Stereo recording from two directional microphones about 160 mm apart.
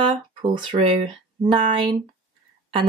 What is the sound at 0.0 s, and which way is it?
Speech, 30° right (ahead or behind).